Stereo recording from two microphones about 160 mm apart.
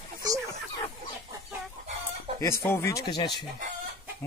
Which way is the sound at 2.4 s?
15° left (ahead or behind).